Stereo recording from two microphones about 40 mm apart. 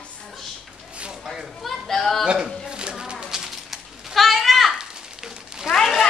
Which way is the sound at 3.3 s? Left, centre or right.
Centre.